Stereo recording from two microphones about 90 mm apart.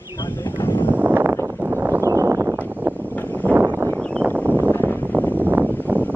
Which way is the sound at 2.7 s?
20° right (ahead or behind).